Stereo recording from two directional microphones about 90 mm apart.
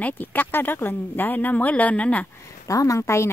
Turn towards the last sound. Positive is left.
turn(degrees=30)  # may be behind; listen again after turning